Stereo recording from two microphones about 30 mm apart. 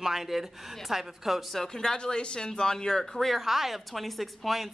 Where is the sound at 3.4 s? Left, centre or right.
Centre.